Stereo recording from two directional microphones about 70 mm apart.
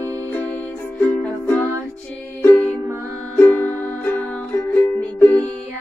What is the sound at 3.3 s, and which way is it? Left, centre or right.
Music, left.